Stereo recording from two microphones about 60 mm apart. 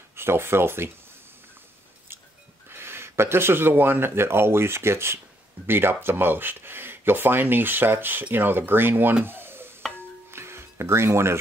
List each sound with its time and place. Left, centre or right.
0.1 s speech: right
2.7 s speech: right
9.2 s stir: right
10.3 s music: right